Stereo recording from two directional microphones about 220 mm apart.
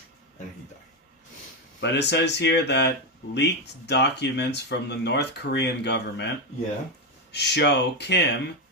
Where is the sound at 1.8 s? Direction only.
50° left (ahead or behind).